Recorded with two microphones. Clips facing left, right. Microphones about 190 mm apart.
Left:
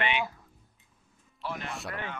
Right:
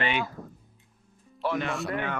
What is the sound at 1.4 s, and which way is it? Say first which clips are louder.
Speech: right 9 dB; 80° right.